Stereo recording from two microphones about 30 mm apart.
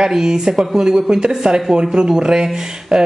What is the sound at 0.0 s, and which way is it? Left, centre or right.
Speech, centre.